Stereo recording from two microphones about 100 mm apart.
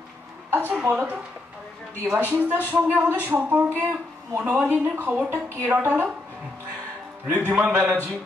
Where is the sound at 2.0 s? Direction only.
20° right (ahead or behind).